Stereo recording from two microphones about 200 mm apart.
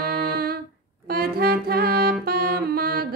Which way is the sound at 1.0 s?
50° right (ahead or behind).